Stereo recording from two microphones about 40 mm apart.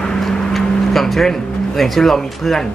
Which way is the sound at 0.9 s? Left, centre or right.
Centre.